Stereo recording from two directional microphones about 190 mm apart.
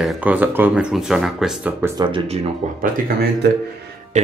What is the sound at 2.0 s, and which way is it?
Speech, 30° right (ahead or behind).